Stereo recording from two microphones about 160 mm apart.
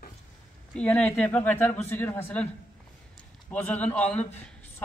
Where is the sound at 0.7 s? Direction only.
5° left (ahead or behind).